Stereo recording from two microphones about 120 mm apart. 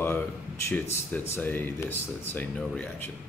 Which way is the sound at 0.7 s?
20° left (ahead or behind).